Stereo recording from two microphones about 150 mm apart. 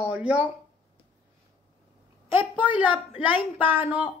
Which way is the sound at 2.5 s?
10° right (ahead or behind).